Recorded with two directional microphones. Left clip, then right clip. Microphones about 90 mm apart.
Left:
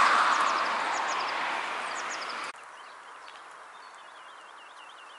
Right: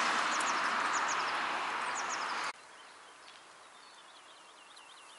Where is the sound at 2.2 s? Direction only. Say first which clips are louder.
Left 1 dB; 35° right (ahead or behind).